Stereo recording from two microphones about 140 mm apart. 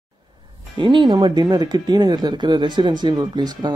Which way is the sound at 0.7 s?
35° right (ahead or behind).